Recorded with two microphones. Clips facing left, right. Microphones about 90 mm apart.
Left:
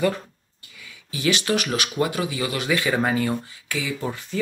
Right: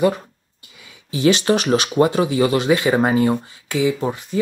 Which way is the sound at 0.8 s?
30° right (ahead or behind).